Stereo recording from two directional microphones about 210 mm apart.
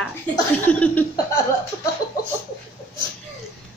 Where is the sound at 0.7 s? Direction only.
5° left (ahead or behind).